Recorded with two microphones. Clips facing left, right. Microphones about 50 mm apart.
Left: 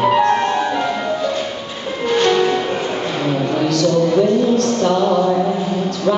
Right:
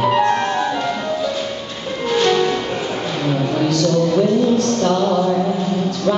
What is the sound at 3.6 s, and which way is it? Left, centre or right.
Music, centre.